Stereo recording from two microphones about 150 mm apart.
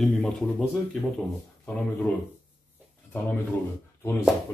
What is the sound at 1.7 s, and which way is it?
Speech, 5° left (ahead or behind).